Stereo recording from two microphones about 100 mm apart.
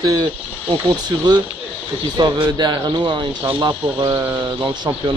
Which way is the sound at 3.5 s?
40° right (ahead or behind).